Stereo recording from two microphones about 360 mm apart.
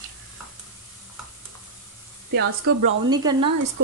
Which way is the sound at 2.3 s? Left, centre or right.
Right.